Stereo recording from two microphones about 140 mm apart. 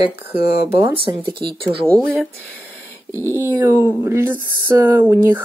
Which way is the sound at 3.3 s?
15° right (ahead or behind).